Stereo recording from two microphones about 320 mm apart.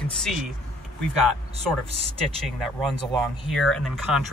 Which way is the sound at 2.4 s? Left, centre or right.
Centre.